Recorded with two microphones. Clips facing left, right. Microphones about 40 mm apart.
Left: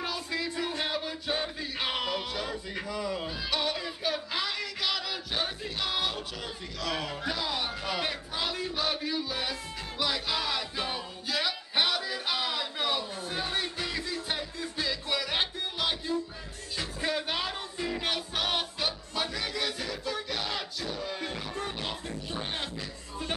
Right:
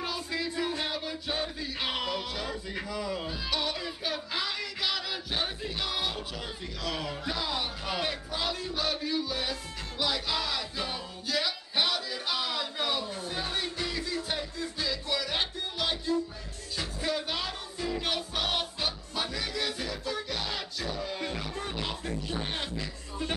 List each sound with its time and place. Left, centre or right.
0.0 s music: centre
18.0 s music: centre